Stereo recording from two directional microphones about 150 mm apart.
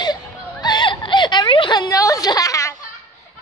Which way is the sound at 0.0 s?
30° left (ahead or behind).